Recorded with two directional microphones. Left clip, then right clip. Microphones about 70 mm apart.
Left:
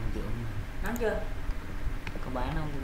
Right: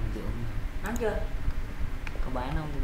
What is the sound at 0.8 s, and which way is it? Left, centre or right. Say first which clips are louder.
Speech: even; centre.